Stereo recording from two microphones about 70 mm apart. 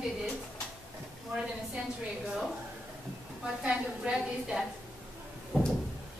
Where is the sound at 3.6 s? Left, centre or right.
Centre.